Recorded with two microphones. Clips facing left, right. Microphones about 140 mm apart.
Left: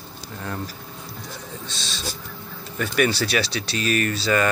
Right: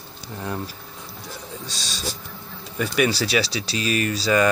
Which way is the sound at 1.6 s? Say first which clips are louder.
Even; 40° right (ahead or behind).